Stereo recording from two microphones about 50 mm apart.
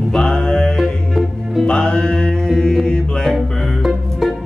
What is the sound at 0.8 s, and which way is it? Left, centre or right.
Music, centre.